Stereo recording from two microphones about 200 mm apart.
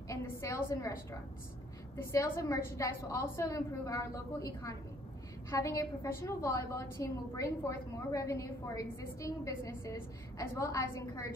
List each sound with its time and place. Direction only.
0.1 s a woman's voice: 15° left (ahead or behind)
2.0 s a woman's voice: 10° left (ahead or behind)